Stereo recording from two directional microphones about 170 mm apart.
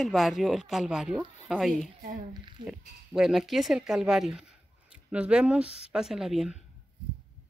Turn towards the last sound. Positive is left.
turn(degrees=0)  # may be behind; listen again after turning